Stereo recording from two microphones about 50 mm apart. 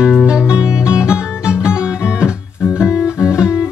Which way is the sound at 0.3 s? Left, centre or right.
Centre.